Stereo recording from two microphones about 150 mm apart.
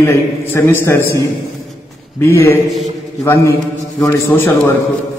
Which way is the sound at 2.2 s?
15° left (ahead or behind).